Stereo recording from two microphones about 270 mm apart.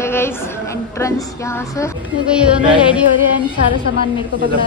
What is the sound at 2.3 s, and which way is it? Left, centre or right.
Speech, centre.